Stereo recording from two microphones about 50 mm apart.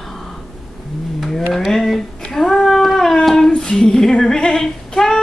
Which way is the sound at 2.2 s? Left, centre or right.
Centre.